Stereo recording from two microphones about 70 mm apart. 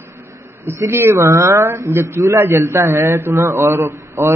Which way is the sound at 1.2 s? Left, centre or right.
Right.